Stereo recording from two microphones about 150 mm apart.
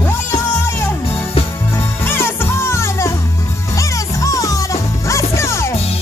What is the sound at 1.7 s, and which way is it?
Music, 15° left (ahead or behind).